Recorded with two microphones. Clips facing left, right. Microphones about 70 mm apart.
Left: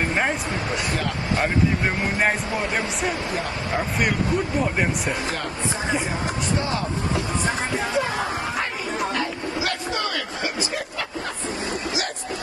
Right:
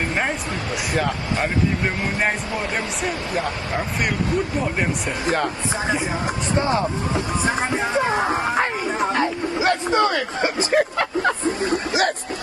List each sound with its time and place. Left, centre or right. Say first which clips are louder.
2.1 s speech: even; centre
6.5 s a sound: right 7 dB; right
10.7 s vehicle: right 10 dB; right